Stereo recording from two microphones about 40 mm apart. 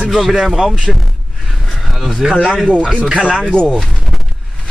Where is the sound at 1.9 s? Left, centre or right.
Centre.